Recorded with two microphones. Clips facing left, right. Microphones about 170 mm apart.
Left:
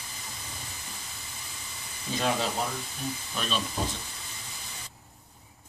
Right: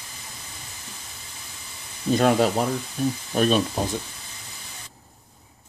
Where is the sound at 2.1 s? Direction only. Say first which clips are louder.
Right 9 dB; 55° right (ahead or behind).